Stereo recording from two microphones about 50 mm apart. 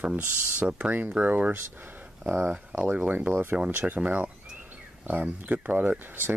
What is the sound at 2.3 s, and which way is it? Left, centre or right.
Speech, centre.